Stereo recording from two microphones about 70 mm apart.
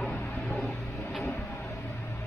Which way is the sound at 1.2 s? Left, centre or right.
Left.